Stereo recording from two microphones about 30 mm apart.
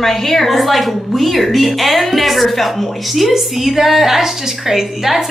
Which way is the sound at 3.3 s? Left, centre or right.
Centre.